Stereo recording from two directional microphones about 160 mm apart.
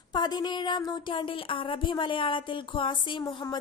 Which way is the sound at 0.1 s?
25° left (ahead or behind).